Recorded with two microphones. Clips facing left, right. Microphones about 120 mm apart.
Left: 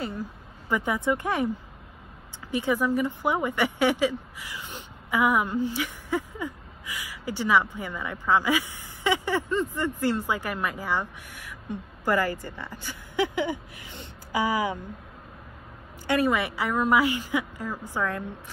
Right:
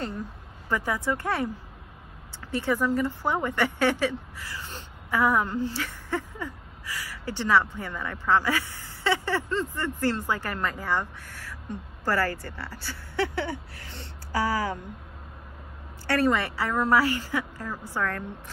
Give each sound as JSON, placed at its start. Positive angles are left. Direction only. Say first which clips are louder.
{"t": 0.7, "sound": "a woman's voice", "louder": "left 2 dB", "side_deg": 15}
{"t": 2.5, "sound": "a woman's voice", "louder": "left 1 dB", "side_deg": 15}
{"t": 16.1, "sound": "a woman's voice", "louder": "even", "side_deg": 15}